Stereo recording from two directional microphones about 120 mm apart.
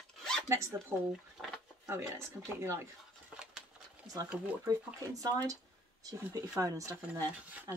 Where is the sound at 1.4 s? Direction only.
10° left (ahead or behind).